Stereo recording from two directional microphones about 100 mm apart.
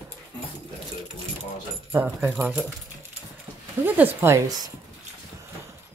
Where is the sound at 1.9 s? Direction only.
25° right (ahead or behind).